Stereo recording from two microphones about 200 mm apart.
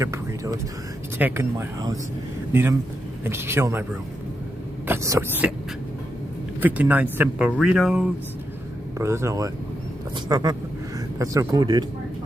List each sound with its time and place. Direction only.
0.0 s speech: 15° right (ahead or behind)
4.8 s speech: 15° right (ahead or behind)
6.6 s speech: 5° right (ahead or behind)
8.9 s speech: 15° right (ahead or behind)